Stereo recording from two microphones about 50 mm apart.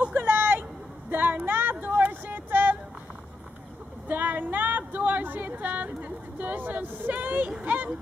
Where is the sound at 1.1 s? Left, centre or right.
Right.